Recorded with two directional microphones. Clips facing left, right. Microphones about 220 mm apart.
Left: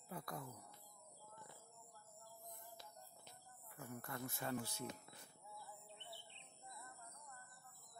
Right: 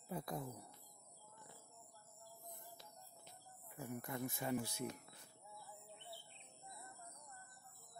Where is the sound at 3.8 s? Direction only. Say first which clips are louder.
Right 5 dB; 20° right (ahead or behind).